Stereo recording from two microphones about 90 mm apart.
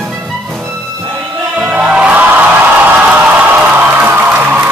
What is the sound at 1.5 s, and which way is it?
Music, 15° right (ahead or behind).